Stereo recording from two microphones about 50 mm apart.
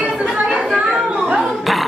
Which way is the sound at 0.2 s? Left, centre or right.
Centre.